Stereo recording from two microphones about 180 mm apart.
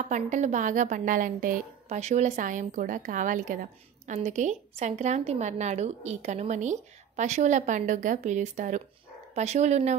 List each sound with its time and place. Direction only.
0.0 s a woman's voice: 40° right (ahead or behind)